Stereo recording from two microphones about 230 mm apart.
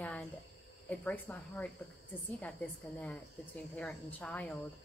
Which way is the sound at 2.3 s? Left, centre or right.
Centre.